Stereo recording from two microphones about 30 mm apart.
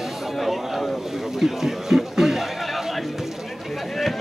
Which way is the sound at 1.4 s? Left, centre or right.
Centre.